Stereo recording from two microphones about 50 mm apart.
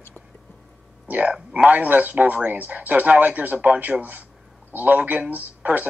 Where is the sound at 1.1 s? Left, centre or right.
Right.